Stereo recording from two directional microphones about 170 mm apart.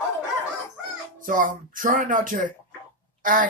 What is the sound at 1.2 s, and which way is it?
Speech, 50° right (ahead or behind).